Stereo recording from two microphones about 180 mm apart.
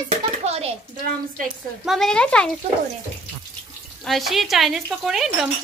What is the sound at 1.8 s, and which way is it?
Speech, centre (ahead or behind).